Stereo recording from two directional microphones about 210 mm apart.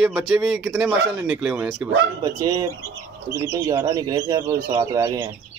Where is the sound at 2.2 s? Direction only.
15° right (ahead or behind).